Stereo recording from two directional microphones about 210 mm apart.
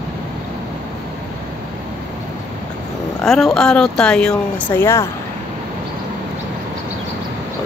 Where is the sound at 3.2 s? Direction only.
Centre (ahead or behind).